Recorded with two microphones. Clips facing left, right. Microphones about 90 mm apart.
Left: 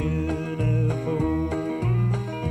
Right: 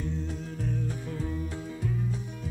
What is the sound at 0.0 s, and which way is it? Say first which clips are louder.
Music: left 9 dB; 90° left.